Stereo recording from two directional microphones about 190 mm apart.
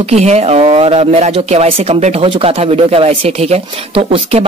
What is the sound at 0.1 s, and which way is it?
Speech, 35° right (ahead or behind).